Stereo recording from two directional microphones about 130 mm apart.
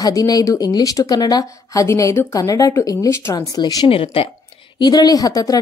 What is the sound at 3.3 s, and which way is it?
Speech, 30° left (ahead or behind).